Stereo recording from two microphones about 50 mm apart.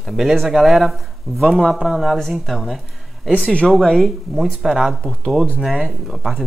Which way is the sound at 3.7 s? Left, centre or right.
Centre.